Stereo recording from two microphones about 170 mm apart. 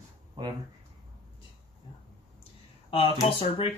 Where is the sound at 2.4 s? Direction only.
35° left (ahead or behind).